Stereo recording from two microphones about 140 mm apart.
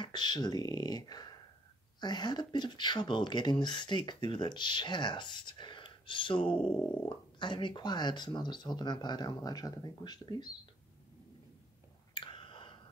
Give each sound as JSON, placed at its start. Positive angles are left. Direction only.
{"t": 0.0, "sound": "speech", "side_deg": 30}
{"t": 12.1, "sound": "whispering", "side_deg": 35}